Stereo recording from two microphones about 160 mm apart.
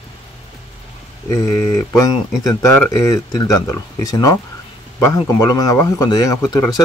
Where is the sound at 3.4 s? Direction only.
20° left (ahead or behind).